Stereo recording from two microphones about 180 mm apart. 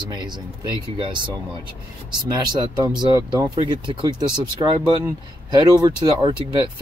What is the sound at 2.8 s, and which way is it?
Speech, 20° right (ahead or behind).